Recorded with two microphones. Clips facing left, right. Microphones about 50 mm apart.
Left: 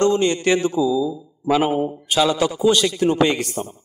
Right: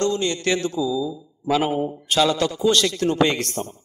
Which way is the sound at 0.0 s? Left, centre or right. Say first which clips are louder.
Left 5 dB; left.